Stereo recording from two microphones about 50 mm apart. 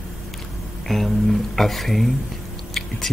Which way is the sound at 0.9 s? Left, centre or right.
Centre.